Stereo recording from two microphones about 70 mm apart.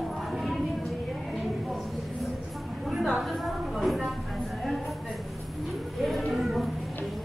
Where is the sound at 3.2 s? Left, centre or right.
Centre.